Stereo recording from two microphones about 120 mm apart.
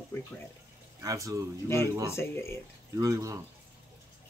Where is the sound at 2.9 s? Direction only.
30° right (ahead or behind).